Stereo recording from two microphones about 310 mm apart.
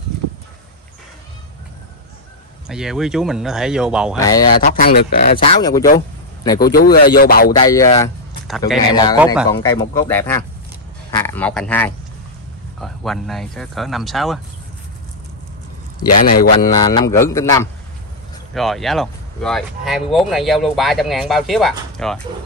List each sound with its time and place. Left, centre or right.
0.2 s a sound: right
2.7 s speech: centre
4.2 s speech: centre
4.6 s speech: left; by 5.9 s centre
5.9 s a sound: centre
6.6 s speech: left
7.5 s speech: centre
16.3 s speech: left
16.7 s speech: centre